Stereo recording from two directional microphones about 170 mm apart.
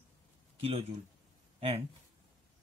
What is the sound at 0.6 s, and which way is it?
Speech, 35° right (ahead or behind).